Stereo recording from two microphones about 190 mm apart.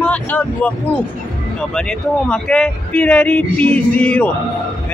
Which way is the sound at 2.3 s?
5° left (ahead or behind).